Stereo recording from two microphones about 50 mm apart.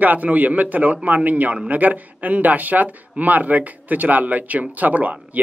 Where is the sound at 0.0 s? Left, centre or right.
Right.